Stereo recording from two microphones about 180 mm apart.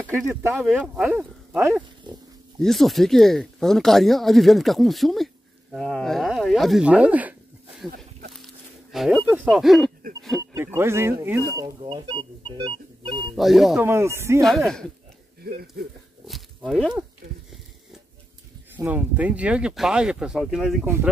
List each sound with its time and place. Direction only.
0.2 s speech: 15° right (ahead or behind)
2.6 s speech: centre (ahead or behind)
8.9 s speech: centre (ahead or behind)
10.5 s speech: 15° right (ahead or behind)
11.6 s speech: 25° right (ahead or behind)
13.4 s speech: centre (ahead or behind)
13.8 s speech: 15° right (ahead or behind)
15.4 s speech: 60° right (ahead or behind)
16.3 s speech: centre (ahead or behind)
18.8 s speech: 10° right (ahead or behind)